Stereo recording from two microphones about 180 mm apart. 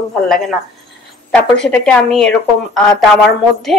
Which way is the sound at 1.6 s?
5° left (ahead or behind).